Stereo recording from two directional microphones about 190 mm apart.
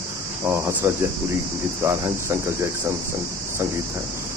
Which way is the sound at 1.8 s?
15° right (ahead or behind).